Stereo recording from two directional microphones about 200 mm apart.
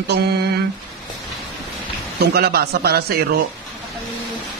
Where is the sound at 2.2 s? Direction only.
50° right (ahead or behind).